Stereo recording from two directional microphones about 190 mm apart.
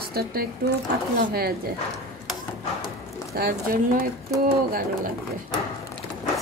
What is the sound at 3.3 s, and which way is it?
Speech, 50° right (ahead or behind).